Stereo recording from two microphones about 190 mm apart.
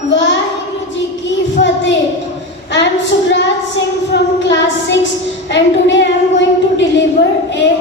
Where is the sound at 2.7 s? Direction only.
70° left (ahead or behind).